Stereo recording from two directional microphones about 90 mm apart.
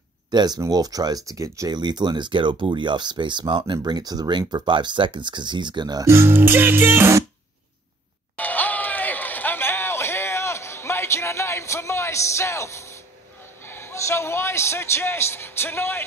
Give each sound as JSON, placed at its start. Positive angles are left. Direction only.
{"t": 0.3, "sound": "speech", "side_deg": -50}
{"t": 1.8, "sound": "speech", "side_deg": -55}
{"t": 6.0, "sound": "music", "side_deg": -25}
{"t": 8.4, "sound": "basketball bounce", "side_deg": 20}
{"t": 13.6, "sound": "a sound", "side_deg": 25}